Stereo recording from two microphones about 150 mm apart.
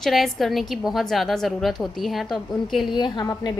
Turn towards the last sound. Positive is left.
turn(degrees=30)  # may be behind; listen again after turning